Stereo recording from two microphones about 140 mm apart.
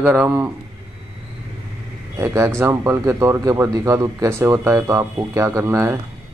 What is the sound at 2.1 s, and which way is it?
Speech, 20° right (ahead or behind).